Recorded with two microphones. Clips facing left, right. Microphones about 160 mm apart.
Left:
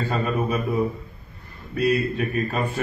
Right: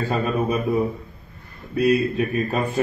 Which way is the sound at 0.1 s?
20° right (ahead or behind).